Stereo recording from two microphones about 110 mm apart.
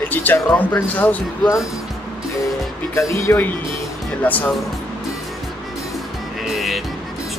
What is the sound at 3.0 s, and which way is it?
Speech, 30° left (ahead or behind).